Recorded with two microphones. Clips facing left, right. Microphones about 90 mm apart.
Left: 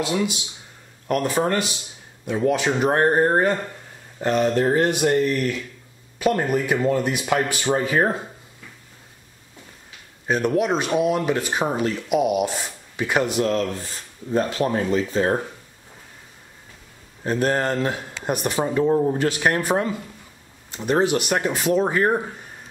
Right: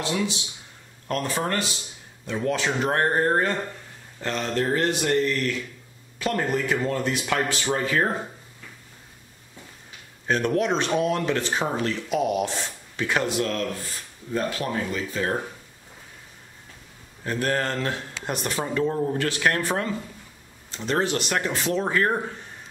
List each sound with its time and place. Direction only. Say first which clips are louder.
0.0 s speech: left 3 dB; 10° left (ahead or behind)
10.2 s speech: left 2 dB; 10° left (ahead or behind); by 15.3 s 25° left (ahead or behind)
17.2 s speech: left 4 dB; 20° left (ahead or behind)